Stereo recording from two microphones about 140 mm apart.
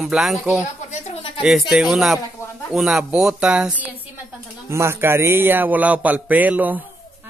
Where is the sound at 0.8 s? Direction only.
50° left (ahead or behind).